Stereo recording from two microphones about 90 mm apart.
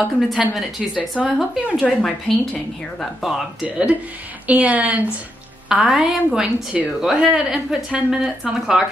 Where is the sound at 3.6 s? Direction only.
15° right (ahead or behind).